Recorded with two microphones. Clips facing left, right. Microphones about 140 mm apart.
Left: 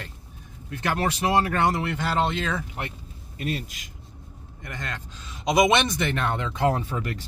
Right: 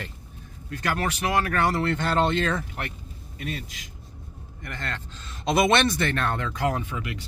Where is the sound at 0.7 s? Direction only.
25° left (ahead or behind); by 2.7 s 10° left (ahead or behind).